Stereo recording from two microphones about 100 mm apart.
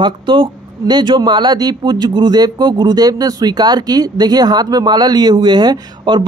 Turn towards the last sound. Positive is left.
turn(degrees=-50)  # may be behind; listen again after turning